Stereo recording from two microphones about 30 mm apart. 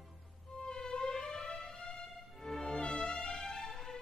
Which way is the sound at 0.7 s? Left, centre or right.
Left.